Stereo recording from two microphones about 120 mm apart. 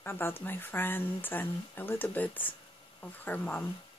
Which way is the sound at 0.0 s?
20° left (ahead or behind).